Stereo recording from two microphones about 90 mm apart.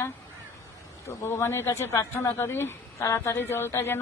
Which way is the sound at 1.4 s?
30° left (ahead or behind).